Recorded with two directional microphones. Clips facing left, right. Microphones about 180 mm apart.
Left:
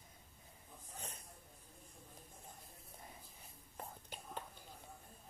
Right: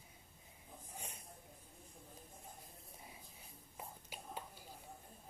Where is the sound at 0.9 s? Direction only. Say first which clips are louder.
Left 1 dB; 10° right (ahead or behind).